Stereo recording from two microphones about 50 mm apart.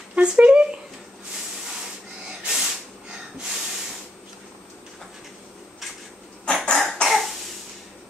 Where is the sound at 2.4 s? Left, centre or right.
Centre.